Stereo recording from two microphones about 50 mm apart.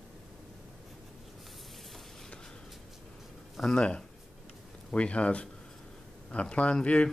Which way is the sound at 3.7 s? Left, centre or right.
Centre.